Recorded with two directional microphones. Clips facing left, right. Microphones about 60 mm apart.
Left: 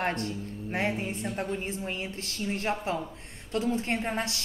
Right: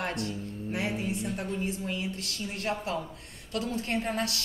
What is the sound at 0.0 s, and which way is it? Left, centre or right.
A woman's voice, left.